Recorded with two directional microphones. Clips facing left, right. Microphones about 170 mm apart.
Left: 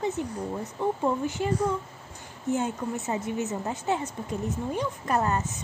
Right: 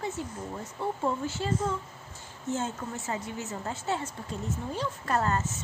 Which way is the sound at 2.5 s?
20° left (ahead or behind).